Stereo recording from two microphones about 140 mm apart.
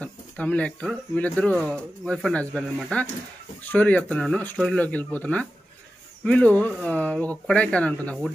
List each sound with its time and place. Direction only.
0.0 s speech: 10° left (ahead or behind)